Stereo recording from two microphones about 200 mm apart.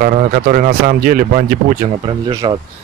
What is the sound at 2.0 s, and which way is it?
Speech, 20° right (ahead or behind).